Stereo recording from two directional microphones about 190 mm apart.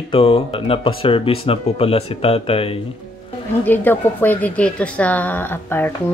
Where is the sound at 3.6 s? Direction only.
10° left (ahead or behind).